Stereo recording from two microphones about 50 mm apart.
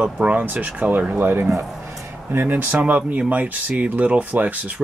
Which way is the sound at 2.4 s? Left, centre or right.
Right.